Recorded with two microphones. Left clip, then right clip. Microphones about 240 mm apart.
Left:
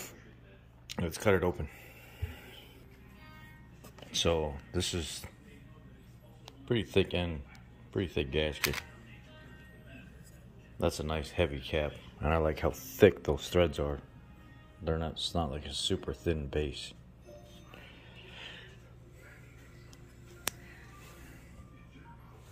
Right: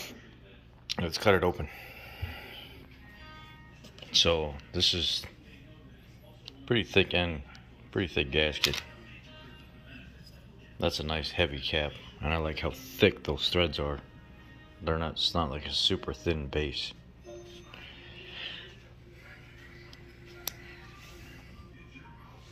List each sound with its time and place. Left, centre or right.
0.9 s a sound: centre
4.2 s speech: centre
6.6 s speech: centre
10.8 s speech: centre
13.1 s speech: centre
13.7 s speech: centre
18.1 s a sound: centre